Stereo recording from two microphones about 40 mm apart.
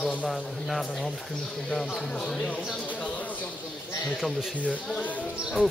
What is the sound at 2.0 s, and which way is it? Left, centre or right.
Speech, centre.